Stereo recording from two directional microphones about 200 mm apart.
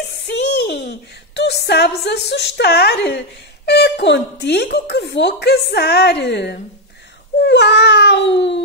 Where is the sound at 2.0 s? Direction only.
60° left (ahead or behind).